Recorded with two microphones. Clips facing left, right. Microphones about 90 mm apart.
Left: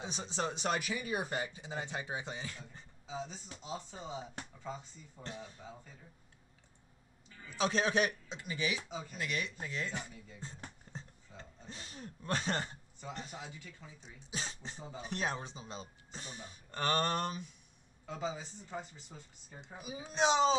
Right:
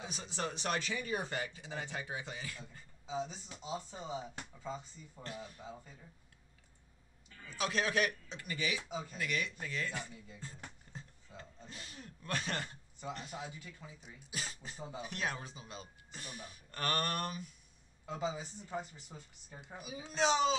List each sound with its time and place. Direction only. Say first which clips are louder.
0.0 s speech: left 3 dB; 25° left (ahead or behind)
3.1 s speech: right 3 dB; 5° right (ahead or behind)
5.2 s speech: even; 25° left (ahead or behind)
7.5 s speech: left 3 dB; 25° left (ahead or behind)
10.9 s a sound: left 2 dB; 30° left (ahead or behind)
13.3 s speech: right 2 dB; 5° right (ahead or behind)
14.2 s speech: left 2 dB; 25° left (ahead or behind)
14.8 s speech: right 4 dB; 5° right (ahead or behind)
15.0 s speech: left 4 dB; 30° left (ahead or behind)
18.0 s speech: right 1 dB; 5° right (ahead or behind)
19.8 s speech: left 2 dB; 20° left (ahead or behind)